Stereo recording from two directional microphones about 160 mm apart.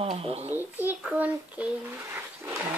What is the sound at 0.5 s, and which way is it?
A child's voice, 10° right (ahead or behind).